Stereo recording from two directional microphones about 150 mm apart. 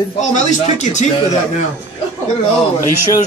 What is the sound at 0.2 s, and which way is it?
Speech, 50° left (ahead or behind).